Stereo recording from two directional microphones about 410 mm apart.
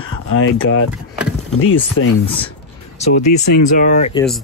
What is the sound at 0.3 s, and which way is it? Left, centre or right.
Speech, left.